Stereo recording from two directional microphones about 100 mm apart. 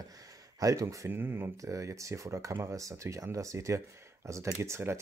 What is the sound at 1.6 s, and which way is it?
Speech, 30° right (ahead or behind).